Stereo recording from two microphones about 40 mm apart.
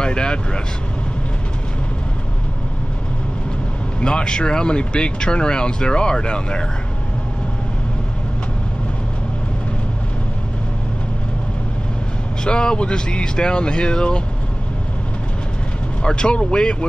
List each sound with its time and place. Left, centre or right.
0.0 s speech: left
4.0 s speech: left
12.4 s speech: left
16.0 s speech: left